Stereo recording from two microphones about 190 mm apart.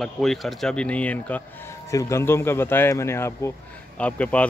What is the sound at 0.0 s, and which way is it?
Speech, centre (ahead or behind).